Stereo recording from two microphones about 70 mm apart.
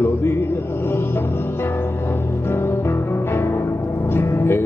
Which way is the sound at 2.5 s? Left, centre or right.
Left.